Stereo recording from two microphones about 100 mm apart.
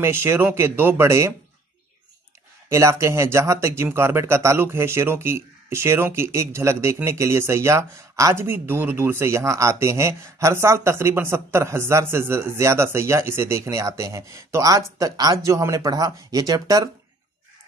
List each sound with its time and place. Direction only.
0.0 s speech: 25° right (ahead or behind)
2.7 s speech: 30° right (ahead or behind)